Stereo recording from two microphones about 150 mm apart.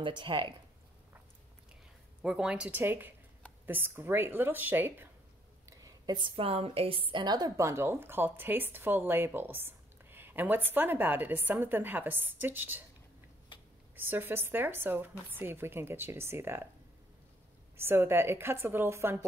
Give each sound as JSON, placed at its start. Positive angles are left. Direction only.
{"t": 0.0, "sound": "speech", "side_deg": -30}
{"t": 2.2, "sound": "speech", "side_deg": -5}
{"t": 5.7, "sound": "a woman's voice", "side_deg": -25}
{"t": 13.9, "sound": "speech", "side_deg": -15}
{"t": 17.7, "sound": "speech", "side_deg": -15}